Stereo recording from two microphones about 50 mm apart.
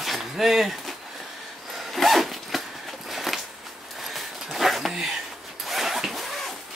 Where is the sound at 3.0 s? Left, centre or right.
Centre.